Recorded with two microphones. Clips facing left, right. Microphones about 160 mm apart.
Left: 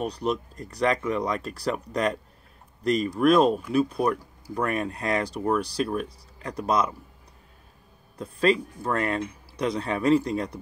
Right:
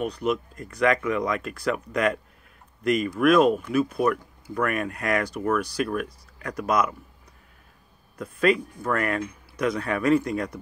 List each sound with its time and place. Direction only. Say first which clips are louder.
0.0 s speech: right 2 dB; 35° left (ahead or behind)
8.2 s speech: right 1 dB; 30° left (ahead or behind)